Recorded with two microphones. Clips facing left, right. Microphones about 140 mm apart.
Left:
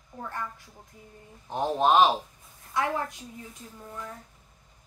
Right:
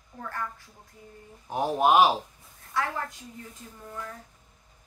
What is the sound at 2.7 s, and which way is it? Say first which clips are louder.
Speech: left 1 dB; 20° left (ahead or behind).